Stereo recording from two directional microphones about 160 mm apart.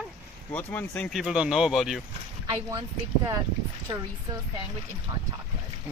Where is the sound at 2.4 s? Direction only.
25° right (ahead or behind).